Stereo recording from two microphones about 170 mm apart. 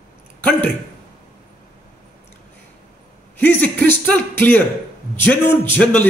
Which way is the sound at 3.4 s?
10° left (ahead or behind).